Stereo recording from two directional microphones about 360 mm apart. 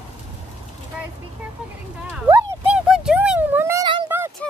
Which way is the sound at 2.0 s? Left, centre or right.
Centre.